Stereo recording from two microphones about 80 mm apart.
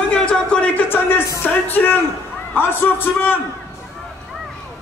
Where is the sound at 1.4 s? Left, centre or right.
Left.